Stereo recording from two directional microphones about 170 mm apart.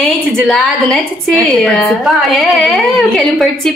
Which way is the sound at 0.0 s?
5° left (ahead or behind).